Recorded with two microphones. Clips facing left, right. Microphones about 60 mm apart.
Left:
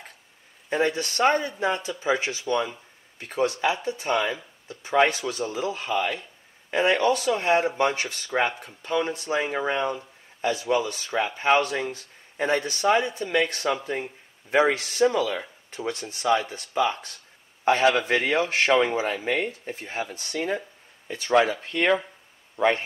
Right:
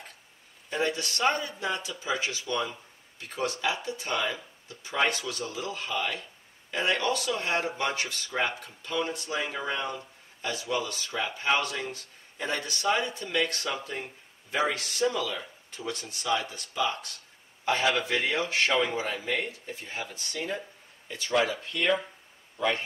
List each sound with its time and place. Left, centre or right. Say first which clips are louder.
0.7 s speech: left 5 dB; left